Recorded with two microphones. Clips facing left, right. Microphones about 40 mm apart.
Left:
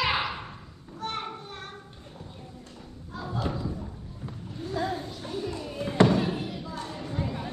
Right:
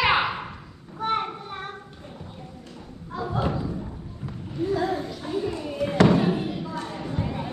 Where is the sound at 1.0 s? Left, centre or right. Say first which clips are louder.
Right 8 dB; centre.